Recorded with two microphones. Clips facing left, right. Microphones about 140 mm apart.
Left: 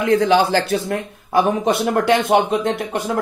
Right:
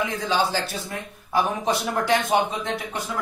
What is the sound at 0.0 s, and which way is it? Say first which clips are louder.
Speech: left 9 dB; 65° left (ahead or behind).